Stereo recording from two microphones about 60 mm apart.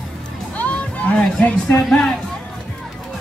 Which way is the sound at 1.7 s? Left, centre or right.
Centre.